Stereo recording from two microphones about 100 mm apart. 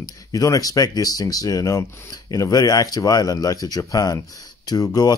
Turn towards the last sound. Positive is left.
turn(degrees=40)  # may be behind; listen again after turning